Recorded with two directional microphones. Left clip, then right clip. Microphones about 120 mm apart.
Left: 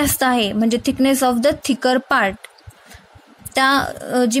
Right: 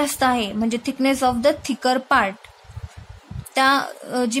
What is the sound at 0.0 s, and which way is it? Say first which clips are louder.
A woman's voice: left 2 dB; 40° left (ahead or behind).